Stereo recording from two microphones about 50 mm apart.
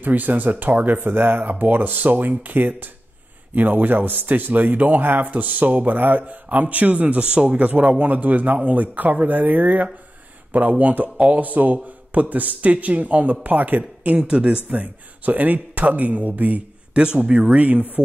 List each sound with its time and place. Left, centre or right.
0.0 s speech: right
14.2 s speech: right
14.7 s speech: right
16.9 s speech: centre